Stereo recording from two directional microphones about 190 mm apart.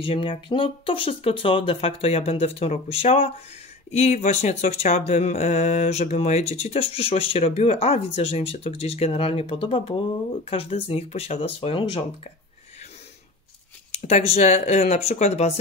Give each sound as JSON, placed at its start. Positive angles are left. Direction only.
{"t": 0.0, "sound": "speech", "side_deg": 30}
{"t": 13.9, "sound": "speech", "side_deg": 35}